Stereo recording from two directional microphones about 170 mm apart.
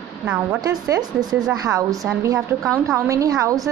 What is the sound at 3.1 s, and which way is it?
Speech, 20° right (ahead or behind).